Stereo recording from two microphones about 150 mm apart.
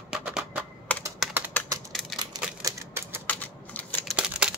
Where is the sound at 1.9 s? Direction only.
Centre (ahead or behind).